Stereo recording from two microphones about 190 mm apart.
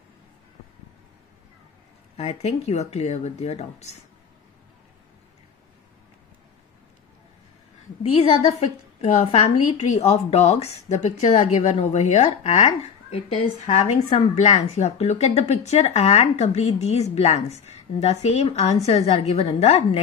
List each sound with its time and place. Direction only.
2.1 s a woman's voice: 35° left (ahead or behind)
8.1 s a woman's voice: 30° left (ahead or behind)